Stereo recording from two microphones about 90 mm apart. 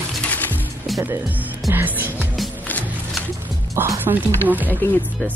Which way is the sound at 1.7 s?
25° right (ahead or behind).